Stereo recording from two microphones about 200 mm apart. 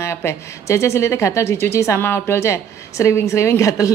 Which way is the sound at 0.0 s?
15° left (ahead or behind).